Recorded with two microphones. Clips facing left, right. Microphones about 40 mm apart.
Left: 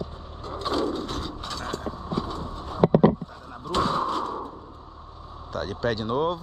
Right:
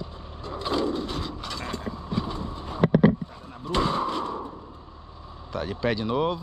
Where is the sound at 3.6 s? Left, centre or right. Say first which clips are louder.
Left 1 dB; right.